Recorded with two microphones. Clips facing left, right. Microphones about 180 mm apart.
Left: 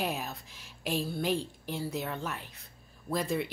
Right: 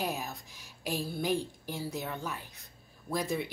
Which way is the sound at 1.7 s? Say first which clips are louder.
Left 3 dB; centre (ahead or behind).